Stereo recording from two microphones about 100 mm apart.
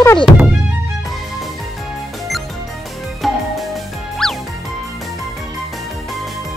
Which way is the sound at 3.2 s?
Centre (ahead or behind).